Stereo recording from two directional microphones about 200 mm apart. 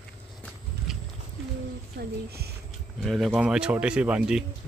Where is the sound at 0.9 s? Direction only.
Centre (ahead or behind).